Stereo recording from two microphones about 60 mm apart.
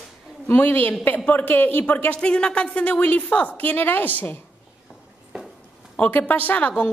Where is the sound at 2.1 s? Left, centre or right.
Centre.